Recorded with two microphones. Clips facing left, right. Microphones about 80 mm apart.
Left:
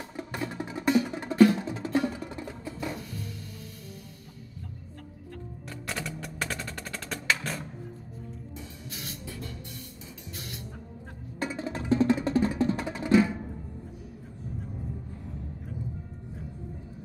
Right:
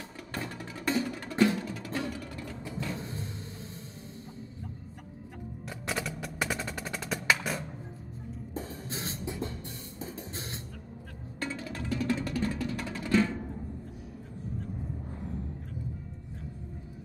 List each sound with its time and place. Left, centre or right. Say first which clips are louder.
0.2 s music: left 5 dB; left
3.0 s music: right 1 dB; right
5.7 s percussion: right 1 dB; centre
8.5 s music: right 5 dB; right
11.3 s music: left 4 dB; left